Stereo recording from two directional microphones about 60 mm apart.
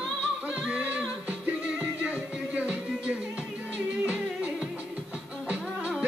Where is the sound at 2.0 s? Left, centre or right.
Right.